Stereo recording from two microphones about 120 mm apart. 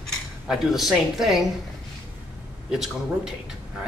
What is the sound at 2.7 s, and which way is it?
Speech, centre (ahead or behind).